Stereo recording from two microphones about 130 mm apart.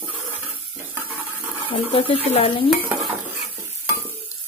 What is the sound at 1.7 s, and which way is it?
Stir, 45° left (ahead or behind).